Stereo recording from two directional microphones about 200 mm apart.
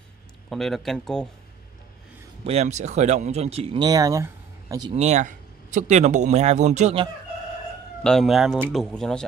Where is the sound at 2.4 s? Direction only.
35° right (ahead or behind); by 4.9 s 20° right (ahead or behind).